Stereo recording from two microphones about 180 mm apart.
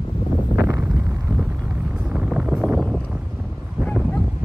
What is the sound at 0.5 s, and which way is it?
Vehicle, 10° right (ahead or behind).